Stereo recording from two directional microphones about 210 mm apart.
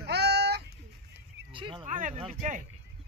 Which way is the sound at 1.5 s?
25° right (ahead or behind).